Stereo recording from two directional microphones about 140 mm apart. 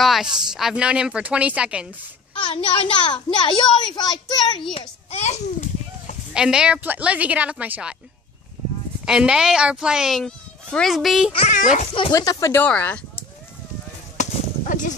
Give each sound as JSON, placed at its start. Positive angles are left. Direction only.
{"t": 0.0, "sound": "speech", "side_deg": 0}
{"t": 2.3, "sound": "a child's voice", "side_deg": 40}
{"t": 4.7, "sound": "children playing", "side_deg": 50}
{"t": 6.3, "sound": "speech", "side_deg": -5}
{"t": 9.0, "sound": "speech", "side_deg": -5}
{"t": 11.5, "sound": "a child's voice", "side_deg": 55}
{"t": 12.1, "sound": "speech", "side_deg": 25}
{"t": 12.6, "sound": "speech", "side_deg": 10}
{"t": 14.2, "sound": "a sound", "side_deg": 60}